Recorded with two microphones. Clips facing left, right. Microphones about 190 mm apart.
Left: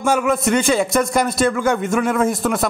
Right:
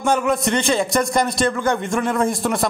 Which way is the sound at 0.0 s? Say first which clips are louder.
Left 1 dB; 5° left (ahead or behind).